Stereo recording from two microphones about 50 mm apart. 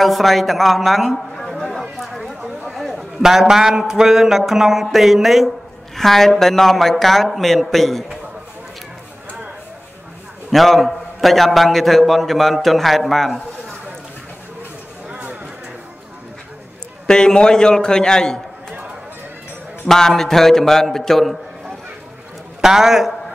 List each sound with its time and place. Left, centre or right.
0.0 s a man's voice: centre
1.7 s a sound: centre
2.7 s chatter: centre
3.0 s a man's voice: centre
10.5 s a man's voice: centre
15.0 s a sound: right
17.0 s a man's voice: centre
19.9 s a man's voice: centre
22.6 s a man's voice: centre